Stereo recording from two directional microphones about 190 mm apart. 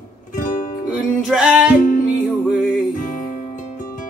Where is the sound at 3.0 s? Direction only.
40° left (ahead or behind).